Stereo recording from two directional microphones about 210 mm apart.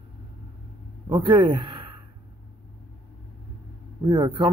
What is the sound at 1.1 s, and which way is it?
Speech, 20° right (ahead or behind).